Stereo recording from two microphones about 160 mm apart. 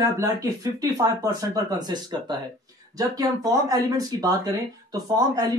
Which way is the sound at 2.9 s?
25° right (ahead or behind).